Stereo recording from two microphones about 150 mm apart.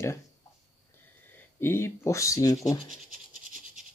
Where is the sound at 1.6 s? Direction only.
15° left (ahead or behind).